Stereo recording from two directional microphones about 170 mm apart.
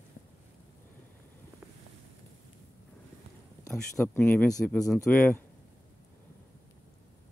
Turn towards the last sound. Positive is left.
turn(degrees=10)  # may be behind; listen again after turning